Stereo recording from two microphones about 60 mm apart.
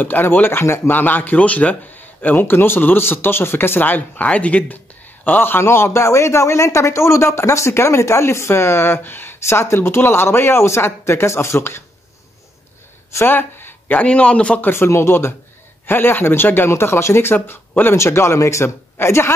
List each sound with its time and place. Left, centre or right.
0.0 s a man's voice: left
2.3 s a man's voice: left
4.1 s a man's voice: left
13.1 s a sound: left
13.9 s a man's voice: left
14.6 s a man's voice: left
17.9 s a man's voice: left